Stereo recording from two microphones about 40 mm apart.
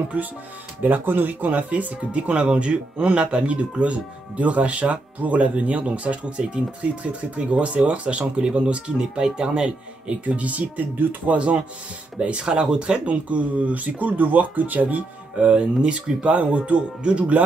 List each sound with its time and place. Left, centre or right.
0.1 s speech: right
1.2 s speech: right
2.3 s speech: right
10.2 s speech: right
13.0 s speech: right
15.3 s speech: right